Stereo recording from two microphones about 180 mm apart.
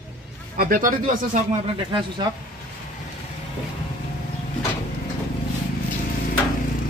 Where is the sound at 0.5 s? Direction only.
50° right (ahead or behind).